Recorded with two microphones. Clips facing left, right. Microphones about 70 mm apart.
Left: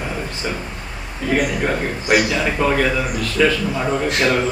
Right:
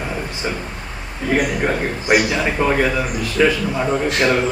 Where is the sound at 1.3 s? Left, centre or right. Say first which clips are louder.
Right 1 dB; centre.